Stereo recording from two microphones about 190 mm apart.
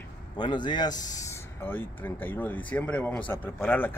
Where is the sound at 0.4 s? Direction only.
25° left (ahead or behind).